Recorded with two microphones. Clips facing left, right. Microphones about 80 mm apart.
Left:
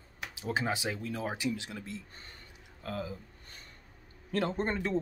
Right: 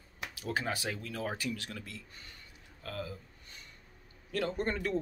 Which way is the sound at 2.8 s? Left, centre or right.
Left.